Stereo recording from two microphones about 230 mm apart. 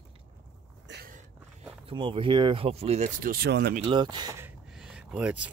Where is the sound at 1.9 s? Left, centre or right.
Right.